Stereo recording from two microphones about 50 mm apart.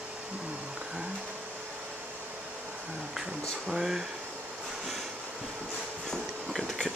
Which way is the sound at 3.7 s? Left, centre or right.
Centre.